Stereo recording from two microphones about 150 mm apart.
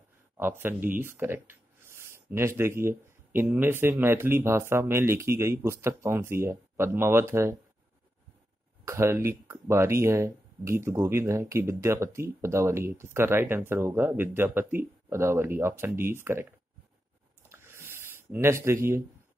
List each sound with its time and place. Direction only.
0.4 s speech: 15° right (ahead or behind)
8.8 s speech: 20° right (ahead or behind)
17.5 s a sound: 15° right (ahead or behind)